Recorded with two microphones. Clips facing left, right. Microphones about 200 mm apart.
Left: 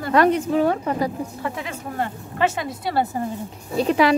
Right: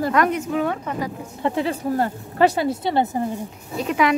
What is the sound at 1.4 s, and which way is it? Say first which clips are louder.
Speech: right 7 dB; 35° right (ahead or behind).